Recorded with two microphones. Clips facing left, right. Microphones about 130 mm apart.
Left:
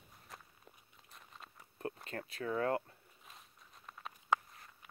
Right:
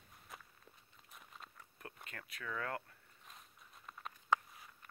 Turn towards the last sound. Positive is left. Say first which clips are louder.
# even
turn(degrees=5)  # may be behind; listen again after turning